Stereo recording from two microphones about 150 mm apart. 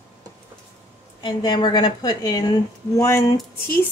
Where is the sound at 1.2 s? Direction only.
30° left (ahead or behind).